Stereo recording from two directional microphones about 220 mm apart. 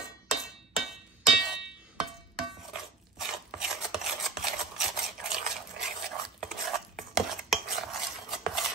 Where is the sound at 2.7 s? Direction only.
Centre (ahead or behind).